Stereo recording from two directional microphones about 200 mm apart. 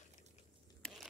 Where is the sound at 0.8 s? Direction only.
Centre (ahead or behind).